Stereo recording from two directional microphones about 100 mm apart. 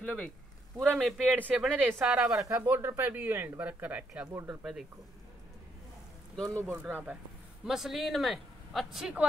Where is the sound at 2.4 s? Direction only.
35° right (ahead or behind); by 4.1 s 15° right (ahead or behind).